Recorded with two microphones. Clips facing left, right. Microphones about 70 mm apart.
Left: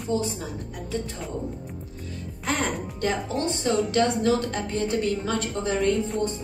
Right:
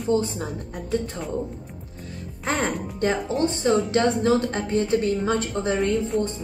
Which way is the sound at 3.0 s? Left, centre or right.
Right.